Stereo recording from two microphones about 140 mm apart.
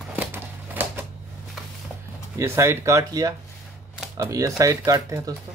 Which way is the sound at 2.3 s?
20° right (ahead or behind).